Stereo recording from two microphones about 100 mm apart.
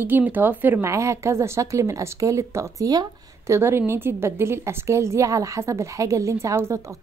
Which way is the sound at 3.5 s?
25° right (ahead or behind).